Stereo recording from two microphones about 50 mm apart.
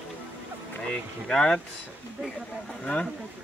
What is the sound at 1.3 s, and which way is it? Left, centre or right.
Speech, centre.